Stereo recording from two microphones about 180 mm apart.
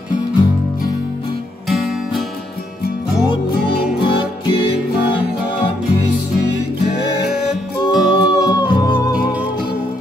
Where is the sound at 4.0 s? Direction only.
30° left (ahead or behind).